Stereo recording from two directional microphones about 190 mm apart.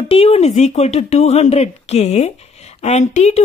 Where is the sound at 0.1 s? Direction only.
30° left (ahead or behind).